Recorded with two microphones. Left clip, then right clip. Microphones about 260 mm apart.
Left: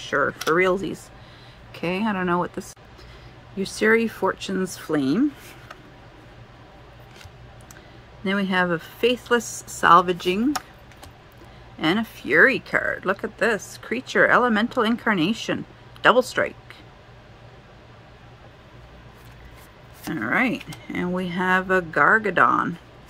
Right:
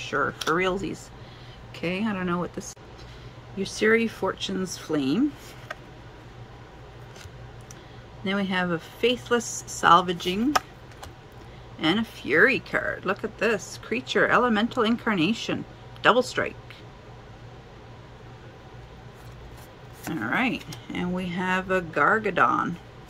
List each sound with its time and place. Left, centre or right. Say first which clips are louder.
0.4 s speech: left 5 dB; centre
3.5 s speech: left 2 dB; left
8.2 s speech: left 4 dB; centre
11.8 s speech: left 2 dB; centre
20.2 s speech: left 4 dB; left